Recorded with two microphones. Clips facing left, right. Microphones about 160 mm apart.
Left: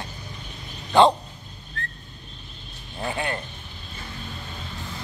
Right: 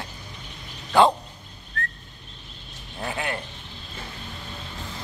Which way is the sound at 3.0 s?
5° right (ahead or behind).